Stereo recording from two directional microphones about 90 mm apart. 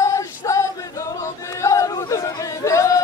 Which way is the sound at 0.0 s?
35° left (ahead or behind).